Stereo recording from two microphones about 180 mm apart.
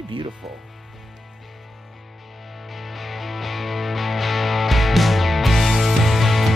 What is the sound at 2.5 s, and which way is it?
Music, centre (ahead or behind).